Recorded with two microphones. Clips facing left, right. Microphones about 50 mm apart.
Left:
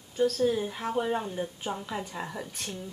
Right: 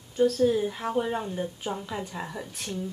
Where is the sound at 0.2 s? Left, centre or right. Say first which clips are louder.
Right 3 dB; centre.